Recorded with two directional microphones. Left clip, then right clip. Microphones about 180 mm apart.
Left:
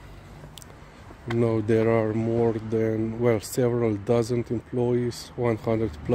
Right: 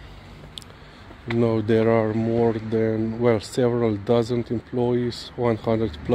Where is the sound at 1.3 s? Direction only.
10° left (ahead or behind).